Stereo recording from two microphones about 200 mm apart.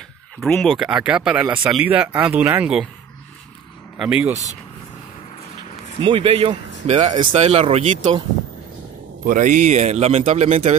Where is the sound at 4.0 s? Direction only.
5° right (ahead or behind).